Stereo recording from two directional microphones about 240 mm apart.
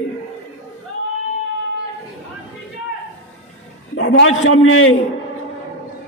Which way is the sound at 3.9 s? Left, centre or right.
Left.